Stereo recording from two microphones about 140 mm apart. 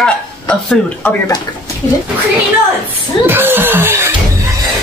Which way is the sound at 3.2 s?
15° right (ahead or behind).